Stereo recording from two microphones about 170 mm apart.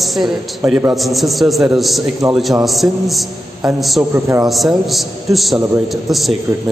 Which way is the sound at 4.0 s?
15° right (ahead or behind).